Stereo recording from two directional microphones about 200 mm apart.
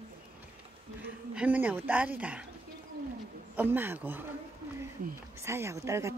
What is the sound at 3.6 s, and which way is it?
Speech, 10° right (ahead or behind).